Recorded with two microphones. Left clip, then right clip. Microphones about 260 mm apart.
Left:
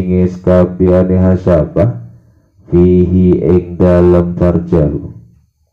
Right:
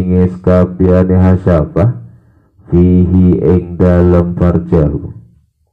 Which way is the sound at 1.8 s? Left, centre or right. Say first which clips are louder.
Left 2 dB; right.